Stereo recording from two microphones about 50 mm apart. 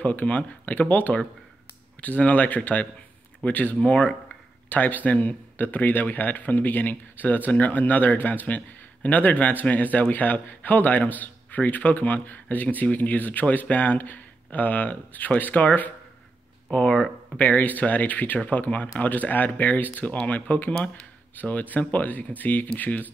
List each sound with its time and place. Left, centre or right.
0.0 s speech: left
20.7 s speech: left
21.4 s speech: left